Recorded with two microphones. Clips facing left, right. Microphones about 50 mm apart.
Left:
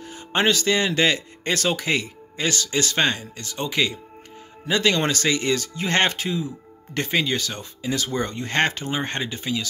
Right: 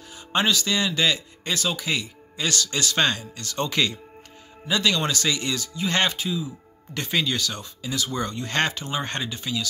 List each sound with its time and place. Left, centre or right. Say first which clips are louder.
0.0 s speech: left 2 dB; left
2.4 s speech: left 2 dB; left
3.5 s speech: even; centre
4.6 s speech: left 3 dB; left
7.1 s speech: left 1 dB; left